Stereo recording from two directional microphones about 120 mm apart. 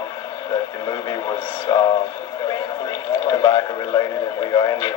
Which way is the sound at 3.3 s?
40° left (ahead or behind).